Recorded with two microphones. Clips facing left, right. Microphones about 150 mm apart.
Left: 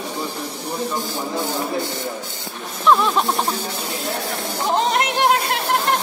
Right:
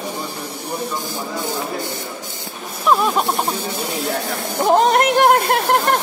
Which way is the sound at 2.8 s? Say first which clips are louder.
Even; 10° right (ahead or behind).